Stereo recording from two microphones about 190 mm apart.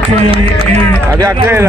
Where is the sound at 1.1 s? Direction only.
15° right (ahead or behind).